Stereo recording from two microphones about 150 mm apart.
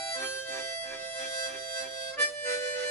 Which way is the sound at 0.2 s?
15° left (ahead or behind).